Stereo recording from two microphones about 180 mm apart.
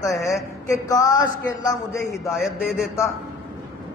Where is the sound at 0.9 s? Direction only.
20° left (ahead or behind).